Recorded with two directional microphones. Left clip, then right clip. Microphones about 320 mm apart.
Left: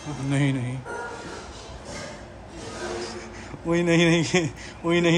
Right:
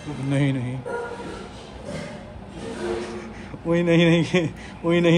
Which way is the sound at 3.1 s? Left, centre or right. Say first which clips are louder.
Right 2 dB; centre.